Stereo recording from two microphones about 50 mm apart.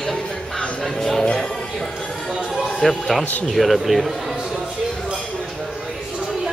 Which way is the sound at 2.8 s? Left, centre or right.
Centre.